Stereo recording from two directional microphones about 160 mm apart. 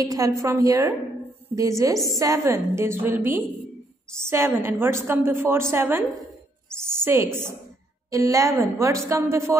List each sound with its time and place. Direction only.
0.0 s a woman's voice: 20° right (ahead or behind)